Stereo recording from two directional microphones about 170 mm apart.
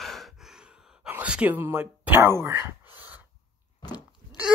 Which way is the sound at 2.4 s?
15° right (ahead or behind).